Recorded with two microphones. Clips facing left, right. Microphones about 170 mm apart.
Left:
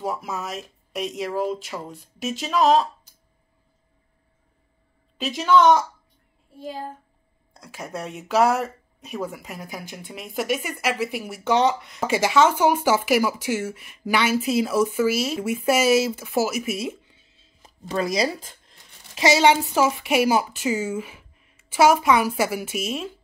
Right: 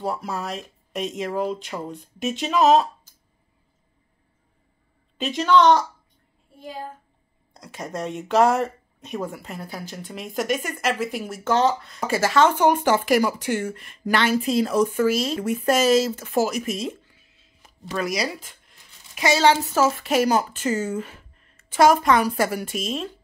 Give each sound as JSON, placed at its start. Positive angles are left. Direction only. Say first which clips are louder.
{"t": 0.0, "sound": "speech", "louder": "right 1 dB", "side_deg": 5}
{"t": 5.1, "sound": "speech", "louder": "even", "side_deg": 0}
{"t": 7.5, "sound": "speech", "louder": "right 2 dB", "side_deg": 5}
{"t": 17.1, "sound": "speech", "louder": "left 1 dB", "side_deg": 30}